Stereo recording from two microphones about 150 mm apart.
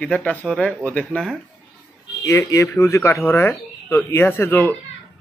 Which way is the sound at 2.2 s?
20° left (ahead or behind).